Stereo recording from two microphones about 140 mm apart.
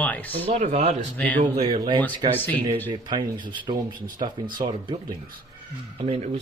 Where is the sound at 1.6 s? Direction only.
35° right (ahead or behind).